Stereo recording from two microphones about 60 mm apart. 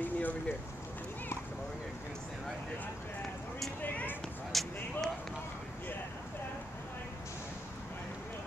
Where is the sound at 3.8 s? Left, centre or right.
Left.